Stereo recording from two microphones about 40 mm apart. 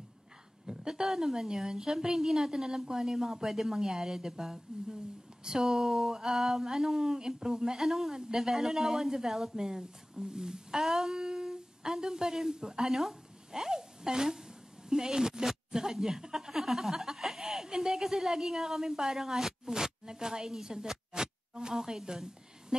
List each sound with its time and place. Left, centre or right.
0.7 s a woman's voice: centre